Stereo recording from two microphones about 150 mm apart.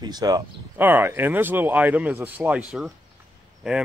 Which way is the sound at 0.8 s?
15° right (ahead or behind).